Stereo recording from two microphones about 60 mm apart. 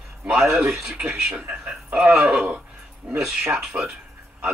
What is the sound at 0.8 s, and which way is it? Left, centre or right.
Speech, centre.